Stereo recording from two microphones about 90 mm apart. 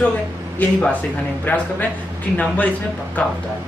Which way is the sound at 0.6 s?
20° left (ahead or behind).